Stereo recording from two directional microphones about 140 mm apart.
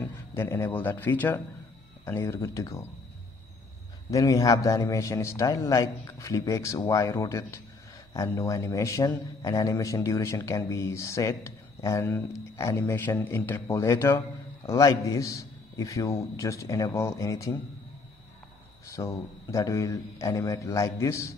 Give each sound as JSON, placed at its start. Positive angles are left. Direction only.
{"t": 0.0, "sound": "a man's voice", "side_deg": 15}
{"t": 4.1, "sound": "a man's voice", "side_deg": 25}
{"t": 18.9, "sound": "a man's voice", "side_deg": 25}